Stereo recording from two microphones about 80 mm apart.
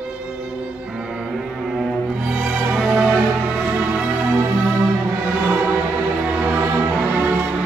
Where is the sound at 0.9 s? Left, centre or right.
Centre.